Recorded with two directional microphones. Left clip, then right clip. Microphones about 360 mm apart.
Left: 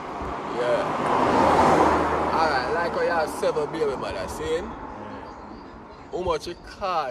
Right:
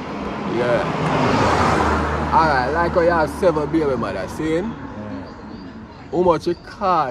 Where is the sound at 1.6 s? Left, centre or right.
Left.